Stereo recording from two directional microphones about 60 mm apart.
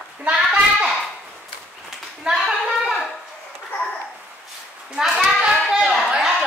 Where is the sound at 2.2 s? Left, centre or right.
Centre.